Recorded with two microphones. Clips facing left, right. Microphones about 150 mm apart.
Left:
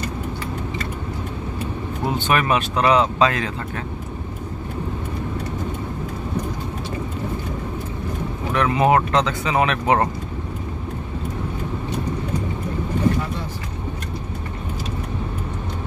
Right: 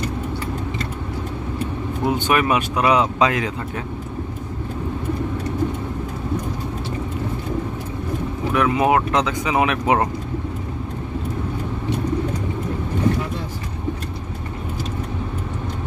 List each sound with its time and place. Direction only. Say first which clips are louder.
2.1 s speech: even; 10° right (ahead or behind)
8.5 s speech: even; 5° right (ahead or behind)